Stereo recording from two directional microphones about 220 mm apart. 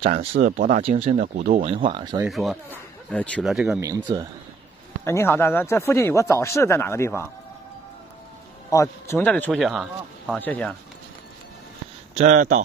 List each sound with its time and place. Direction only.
0.0 s speech: 25° right (ahead or behind)
0.4 s speech: 40° right (ahead or behind); by 2.2 s 20° right (ahead or behind)
2.2 s speech: centre (ahead or behind)
3.8 s speech: 15° right (ahead or behind)
5.0 s speech: 10° left (ahead or behind)
8.6 s speech: 15° left (ahead or behind)
12.2 s speech: 35° right (ahead or behind)